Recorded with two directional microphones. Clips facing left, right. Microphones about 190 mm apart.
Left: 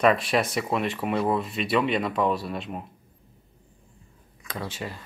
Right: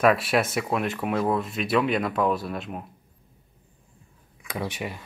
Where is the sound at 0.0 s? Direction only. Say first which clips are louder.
Right 1 dB; 5° right (ahead or behind).